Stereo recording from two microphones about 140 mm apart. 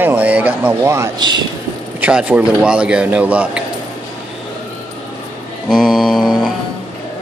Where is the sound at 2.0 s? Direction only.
10° right (ahead or behind).